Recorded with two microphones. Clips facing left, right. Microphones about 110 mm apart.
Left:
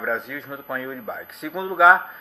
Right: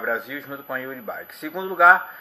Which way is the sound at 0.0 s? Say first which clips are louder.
Even; 5° right (ahead or behind).